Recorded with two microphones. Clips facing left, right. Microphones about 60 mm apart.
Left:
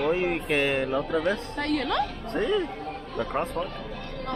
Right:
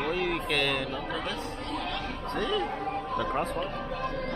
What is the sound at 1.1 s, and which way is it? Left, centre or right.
Speech, left.